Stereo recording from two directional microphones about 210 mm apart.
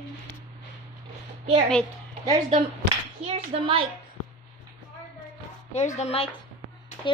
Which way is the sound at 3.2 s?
30° right (ahead or behind).